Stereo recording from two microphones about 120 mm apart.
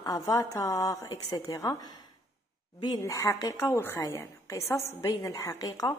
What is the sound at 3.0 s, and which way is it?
A woman's voice, 25° left (ahead or behind).